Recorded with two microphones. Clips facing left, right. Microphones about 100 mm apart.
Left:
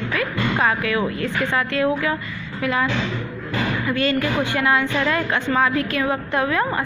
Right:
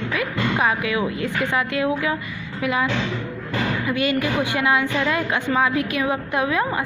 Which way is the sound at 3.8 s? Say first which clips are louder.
Left 1 dB; 15° right (ahead or behind).